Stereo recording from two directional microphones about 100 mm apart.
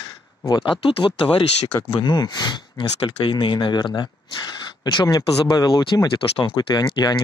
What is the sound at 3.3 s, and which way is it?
Speech, 55° left (ahead or behind).